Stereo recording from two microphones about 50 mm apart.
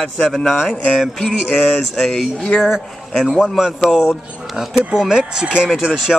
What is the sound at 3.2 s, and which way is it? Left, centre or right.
Speech, centre.